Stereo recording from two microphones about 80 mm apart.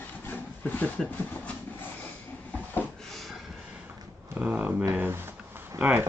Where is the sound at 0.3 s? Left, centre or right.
Centre.